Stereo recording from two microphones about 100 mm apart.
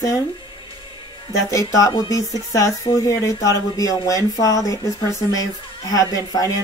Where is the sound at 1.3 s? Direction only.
35° left (ahead or behind).